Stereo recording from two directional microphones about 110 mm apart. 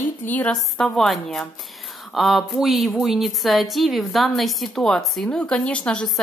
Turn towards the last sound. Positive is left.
turn(degrees=5)  # may be behind; listen again after turning